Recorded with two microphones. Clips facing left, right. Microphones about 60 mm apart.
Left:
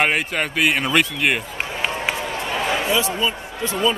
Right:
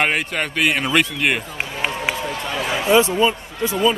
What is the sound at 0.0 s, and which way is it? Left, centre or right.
A man's voice, centre.